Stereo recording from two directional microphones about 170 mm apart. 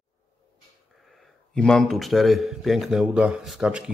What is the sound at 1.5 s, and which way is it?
A man's voice, 5° left (ahead or behind).